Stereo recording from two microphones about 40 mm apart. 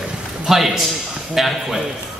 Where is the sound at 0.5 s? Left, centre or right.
Centre.